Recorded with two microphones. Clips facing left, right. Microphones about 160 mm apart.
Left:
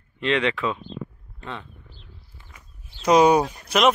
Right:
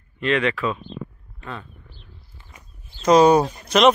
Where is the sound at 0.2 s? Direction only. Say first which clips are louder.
Right 1 dB; 20° left (ahead or behind).